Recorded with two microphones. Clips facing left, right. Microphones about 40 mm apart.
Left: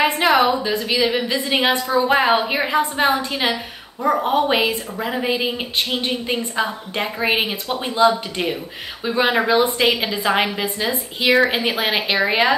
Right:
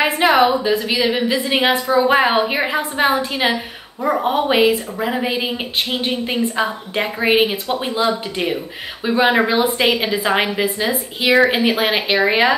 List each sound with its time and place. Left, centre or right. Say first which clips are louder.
0.4 s a woman's voice: right 3 dB; centre